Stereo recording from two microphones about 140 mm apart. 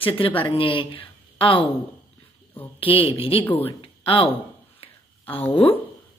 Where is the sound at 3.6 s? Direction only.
40° left (ahead or behind).